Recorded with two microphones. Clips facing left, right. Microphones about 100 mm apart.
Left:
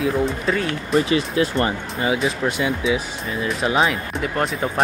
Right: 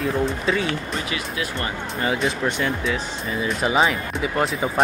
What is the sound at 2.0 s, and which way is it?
Speech, 5° left (ahead or behind).